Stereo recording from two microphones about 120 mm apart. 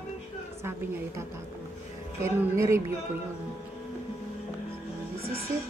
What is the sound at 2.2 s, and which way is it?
Speech, 25° right (ahead or behind).